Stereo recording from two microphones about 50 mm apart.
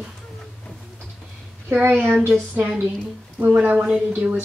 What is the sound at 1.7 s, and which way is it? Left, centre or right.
Speech, right.